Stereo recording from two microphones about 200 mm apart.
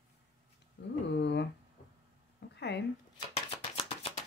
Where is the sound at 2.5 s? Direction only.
55° left (ahead or behind).